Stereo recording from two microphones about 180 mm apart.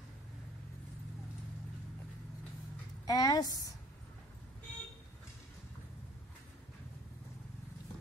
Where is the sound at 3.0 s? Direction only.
20° left (ahead or behind).